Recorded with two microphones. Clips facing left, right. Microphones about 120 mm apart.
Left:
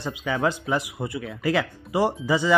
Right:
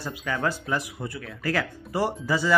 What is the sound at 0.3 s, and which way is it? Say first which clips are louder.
Speech: left 3 dB; 15° left (ahead or behind).